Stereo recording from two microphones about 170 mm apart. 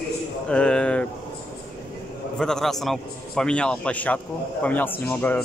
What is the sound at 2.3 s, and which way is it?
A man's voice, 5° left (ahead or behind).